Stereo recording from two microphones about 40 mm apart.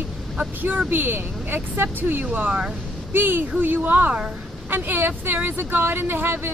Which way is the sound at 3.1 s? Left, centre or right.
Right.